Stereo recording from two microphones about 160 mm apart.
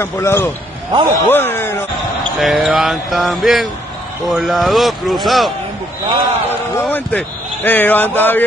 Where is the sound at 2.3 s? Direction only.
Centre (ahead or behind).